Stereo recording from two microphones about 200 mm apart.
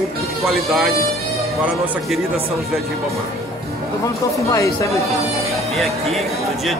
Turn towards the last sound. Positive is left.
turn(degrees=0)  # may be behind; listen again after turning